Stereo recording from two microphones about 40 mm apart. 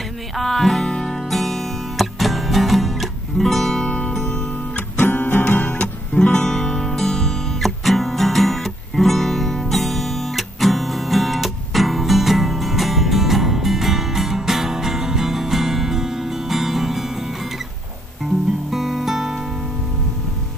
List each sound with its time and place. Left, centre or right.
0.4 s music: centre
0.8 s music: centre
4.3 s guitar: left
5.0 s music: left
6.2 s music: centre
18.7 s music: centre